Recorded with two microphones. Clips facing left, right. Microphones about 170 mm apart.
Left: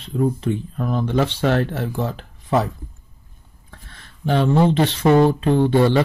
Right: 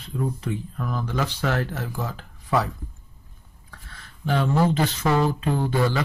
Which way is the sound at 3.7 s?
25° left (ahead or behind).